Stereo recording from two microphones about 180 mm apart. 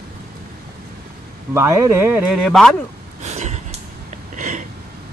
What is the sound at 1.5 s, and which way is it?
Speech, 15° right (ahead or behind).